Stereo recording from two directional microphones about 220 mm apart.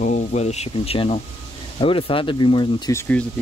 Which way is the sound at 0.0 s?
35° left (ahead or behind).